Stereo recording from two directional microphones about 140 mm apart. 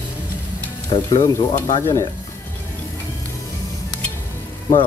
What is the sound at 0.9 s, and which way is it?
Speech, 25° left (ahead or behind).